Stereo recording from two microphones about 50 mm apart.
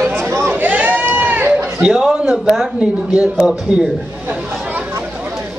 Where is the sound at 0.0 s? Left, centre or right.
Right.